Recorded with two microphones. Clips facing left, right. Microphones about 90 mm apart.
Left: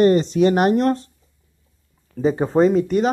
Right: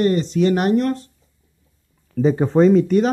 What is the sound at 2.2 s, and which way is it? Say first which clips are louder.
Speech: right 2 dB; 5° left (ahead or behind).